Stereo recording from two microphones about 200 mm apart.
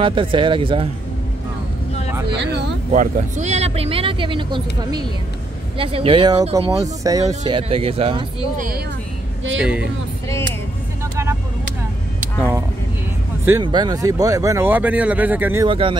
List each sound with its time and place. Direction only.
0.0 s speech: 25° right (ahead or behind)
2.3 s a sound: 60° right (ahead or behind)
2.9 s speech: 35° right (ahead or behind)
5.8 s speech: 25° right (ahead or behind)
8.5 s speech: 45° right (ahead or behind)
9.6 s speech: 5° right (ahead or behind)
12.4 s vehicle: 15° right (ahead or behind)
13.5 s speech: 20° right (ahead or behind)
15.6 s speech: 25° right (ahead or behind)